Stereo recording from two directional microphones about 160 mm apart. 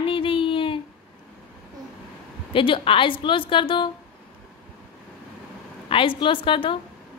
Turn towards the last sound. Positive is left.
turn(degrees=30)  # may be behind; listen again after turning